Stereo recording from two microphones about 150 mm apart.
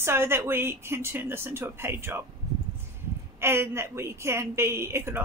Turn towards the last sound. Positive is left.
turn(degrees=-15)  # may be behind; listen again after turning